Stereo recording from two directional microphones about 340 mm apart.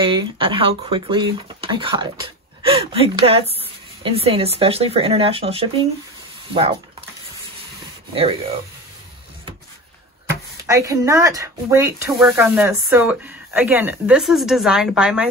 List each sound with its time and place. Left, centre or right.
0.0 s speech: centre
8.1 s speech: centre
10.7 s speech: centre